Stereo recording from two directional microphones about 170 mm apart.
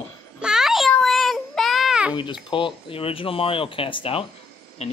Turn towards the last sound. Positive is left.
turn(degrees=40)  # may be behind; listen again after turning